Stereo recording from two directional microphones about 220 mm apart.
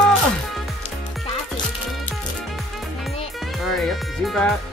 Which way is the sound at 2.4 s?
Centre (ahead or behind).